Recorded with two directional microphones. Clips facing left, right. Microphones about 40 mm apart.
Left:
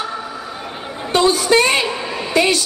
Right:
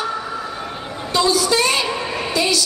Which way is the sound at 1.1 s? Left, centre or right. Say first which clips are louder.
Left 3 dB; left.